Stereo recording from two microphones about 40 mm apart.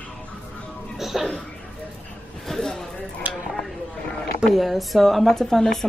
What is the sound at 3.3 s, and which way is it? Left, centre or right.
Tick-tock, right.